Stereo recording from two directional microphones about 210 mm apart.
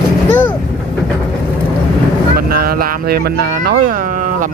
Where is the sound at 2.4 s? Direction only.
45° right (ahead or behind).